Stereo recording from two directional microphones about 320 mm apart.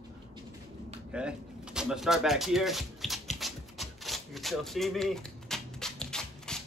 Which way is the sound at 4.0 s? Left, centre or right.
Centre.